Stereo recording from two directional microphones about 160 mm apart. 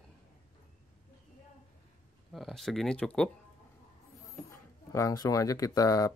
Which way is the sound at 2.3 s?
Centre (ahead or behind).